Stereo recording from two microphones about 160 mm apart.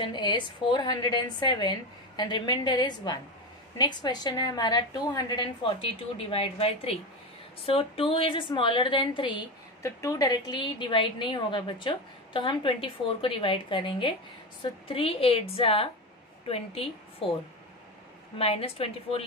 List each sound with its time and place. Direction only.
0.0 s a woman's voice: 30° left (ahead or behind)
18.4 s a woman's voice: 40° left (ahead or behind)